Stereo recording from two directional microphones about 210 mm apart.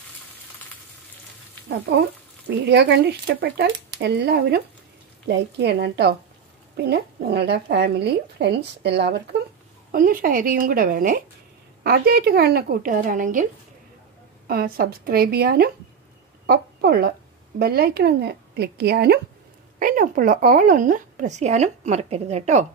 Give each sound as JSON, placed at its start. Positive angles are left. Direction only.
{"t": 1.9, "sound": "speech", "side_deg": -55}
{"t": 9.8, "sound": "speech", "side_deg": -45}
{"t": 14.5, "sound": "a woman's voice", "side_deg": -45}
{"t": 19.8, "sound": "a woman's voice", "side_deg": -40}